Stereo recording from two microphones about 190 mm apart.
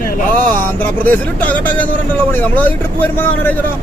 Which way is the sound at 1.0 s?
10° left (ahead or behind).